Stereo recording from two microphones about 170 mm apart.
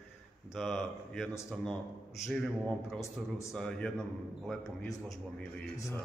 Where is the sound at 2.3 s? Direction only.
Centre (ahead or behind).